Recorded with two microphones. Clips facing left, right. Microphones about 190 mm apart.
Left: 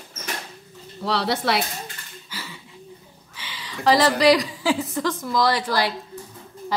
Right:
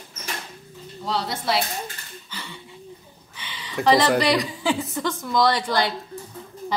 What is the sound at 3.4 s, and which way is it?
A woman's voice, centre (ahead or behind).